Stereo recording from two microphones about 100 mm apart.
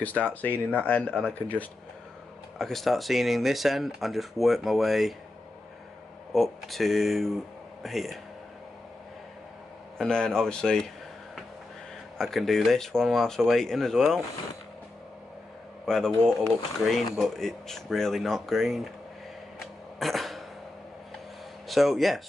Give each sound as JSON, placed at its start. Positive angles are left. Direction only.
{"t": 0.2, "sound": "speech", "side_deg": 15}
{"t": 2.6, "sound": "speech", "side_deg": 0}
{"t": 6.3, "sound": "speech", "side_deg": 0}
{"t": 9.9, "sound": "speech", "side_deg": 5}
{"t": 12.2, "sound": "speech", "side_deg": 0}
{"t": 15.8, "sound": "speech", "side_deg": 5}
{"t": 19.6, "sound": "a sound", "side_deg": 0}
{"t": 21.6, "sound": "speech", "side_deg": 0}